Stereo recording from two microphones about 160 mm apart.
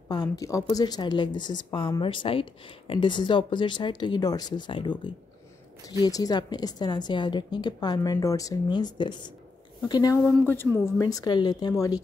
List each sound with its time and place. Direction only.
0.1 s a woman's voice: 25° left (ahead or behind)
10.2 s a woman's voice: 10° left (ahead or behind)